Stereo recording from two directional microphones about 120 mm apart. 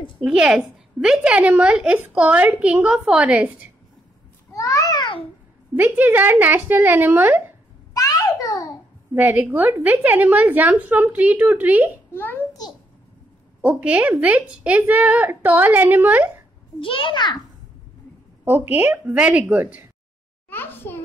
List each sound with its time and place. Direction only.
0.2 s a woman's voice: 5° right (ahead or behind)
4.6 s a sound: 30° left (ahead or behind)
5.8 s a woman's voice: 15° right (ahead or behind)
7.9 s babbling: 30° left (ahead or behind)
9.1 s a woman's voice: 15° right (ahead or behind)
12.1 s a child's voice: 15° left (ahead or behind)
13.6 s a woman's voice: 15° right (ahead or behind)
16.8 s a child's voice: 45° left (ahead or behind)
18.4 s a woman's voice: 15° right (ahead or behind)
20.4 s a sound: 20° left (ahead or behind)